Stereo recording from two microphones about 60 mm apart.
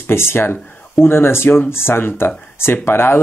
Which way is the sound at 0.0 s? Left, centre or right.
Left.